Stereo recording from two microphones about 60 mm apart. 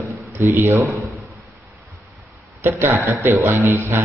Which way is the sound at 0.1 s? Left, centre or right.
Right.